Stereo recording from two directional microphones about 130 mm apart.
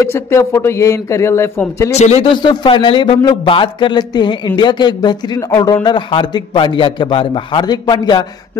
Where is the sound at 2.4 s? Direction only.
35° left (ahead or behind).